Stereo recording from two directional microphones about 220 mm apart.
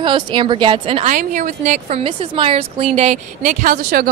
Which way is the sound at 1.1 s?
35° right (ahead or behind).